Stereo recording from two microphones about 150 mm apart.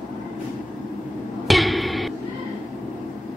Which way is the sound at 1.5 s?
Centre (ahead or behind).